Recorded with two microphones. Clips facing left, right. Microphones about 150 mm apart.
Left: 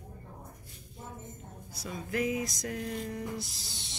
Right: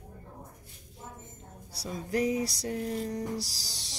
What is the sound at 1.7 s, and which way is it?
Music, 35° right (ahead or behind).